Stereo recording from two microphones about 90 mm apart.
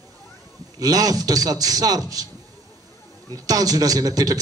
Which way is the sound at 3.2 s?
40° right (ahead or behind).